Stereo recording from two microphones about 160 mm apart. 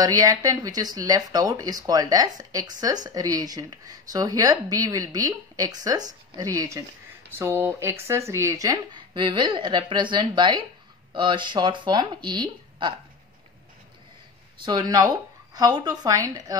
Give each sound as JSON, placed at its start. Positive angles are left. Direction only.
{"t": 0.0, "sound": "speech", "side_deg": -20}
{"t": 14.6, "sound": "speech", "side_deg": -25}